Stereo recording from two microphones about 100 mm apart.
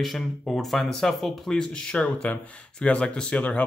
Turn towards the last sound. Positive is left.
turn(degrees=15)  # may be behind; listen again after turning